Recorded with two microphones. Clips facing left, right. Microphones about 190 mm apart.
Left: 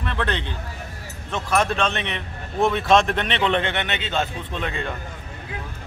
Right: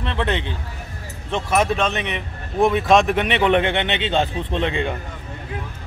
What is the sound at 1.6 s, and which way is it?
A man's voice, 10° right (ahead or behind).